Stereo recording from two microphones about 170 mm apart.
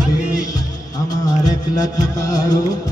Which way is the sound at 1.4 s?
20° left (ahead or behind).